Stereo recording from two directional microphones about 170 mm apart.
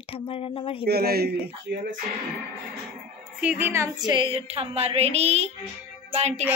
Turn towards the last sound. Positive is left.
turn(degrees=-40)  # may be behind; listen again after turning